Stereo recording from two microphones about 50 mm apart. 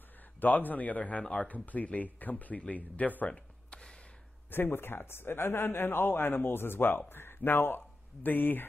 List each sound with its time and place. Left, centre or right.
0.4 s speech: left
4.5 s a man's voice: left